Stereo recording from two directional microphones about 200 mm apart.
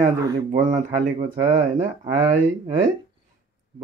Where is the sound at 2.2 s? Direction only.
40° right (ahead or behind).